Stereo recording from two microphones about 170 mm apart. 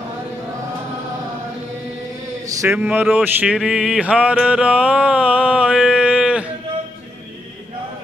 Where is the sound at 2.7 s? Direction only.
10° right (ahead or behind).